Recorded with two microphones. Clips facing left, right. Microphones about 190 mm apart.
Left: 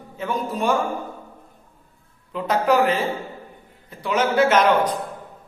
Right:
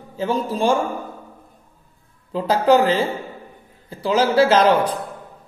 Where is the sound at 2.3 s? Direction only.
30° right (ahead or behind).